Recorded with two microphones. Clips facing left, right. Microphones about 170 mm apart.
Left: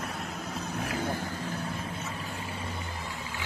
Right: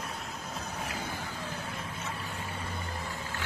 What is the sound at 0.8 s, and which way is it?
Vehicle, 55° left (ahead or behind).